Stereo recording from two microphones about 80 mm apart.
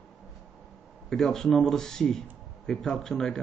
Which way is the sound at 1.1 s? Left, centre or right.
Centre.